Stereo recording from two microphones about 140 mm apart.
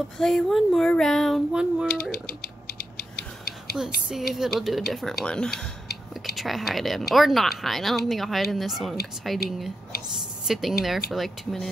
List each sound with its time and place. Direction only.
0.2 s speech: centre (ahead or behind)
1.9 s a sound: 90° left
4.4 s speech: centre (ahead or behind)